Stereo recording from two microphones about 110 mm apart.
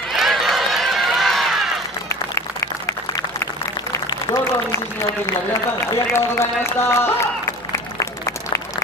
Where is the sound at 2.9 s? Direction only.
30° left (ahead or behind).